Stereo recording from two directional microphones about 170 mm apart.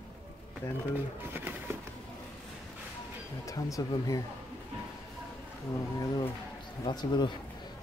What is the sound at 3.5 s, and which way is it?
Speech, 20° left (ahead or behind).